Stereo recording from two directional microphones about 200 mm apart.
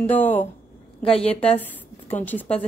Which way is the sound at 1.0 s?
30° left (ahead or behind).